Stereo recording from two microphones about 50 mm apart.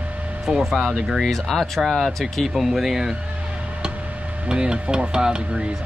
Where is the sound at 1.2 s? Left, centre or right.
Centre.